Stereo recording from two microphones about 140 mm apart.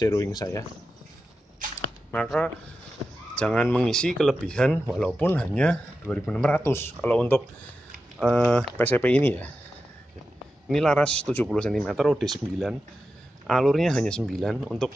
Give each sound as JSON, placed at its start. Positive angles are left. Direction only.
{"t": 0.0, "sound": "speech", "side_deg": 25}
{"t": 2.2, "sound": "speech", "side_deg": 0}
{"t": 10.7, "sound": "speech", "side_deg": 5}